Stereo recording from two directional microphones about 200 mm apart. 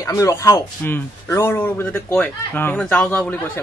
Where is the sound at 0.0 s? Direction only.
15° left (ahead or behind).